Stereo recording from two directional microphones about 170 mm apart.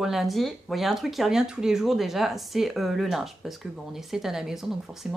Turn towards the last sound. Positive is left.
turn(degrees=-5)  # may be behind; listen again after turning